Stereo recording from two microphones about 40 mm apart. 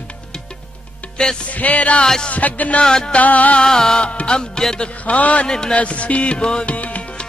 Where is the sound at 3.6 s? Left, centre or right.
Centre.